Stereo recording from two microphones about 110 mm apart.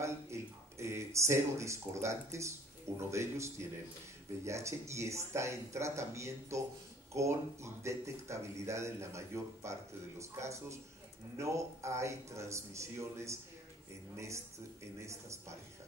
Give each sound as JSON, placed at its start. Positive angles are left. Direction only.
{"t": 0.0, "sound": "speech", "side_deg": -25}